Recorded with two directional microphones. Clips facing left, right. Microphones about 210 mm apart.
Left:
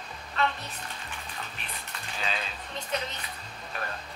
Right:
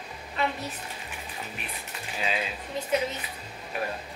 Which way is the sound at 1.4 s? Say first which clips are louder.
Right 3 dB; 10° right (ahead or behind).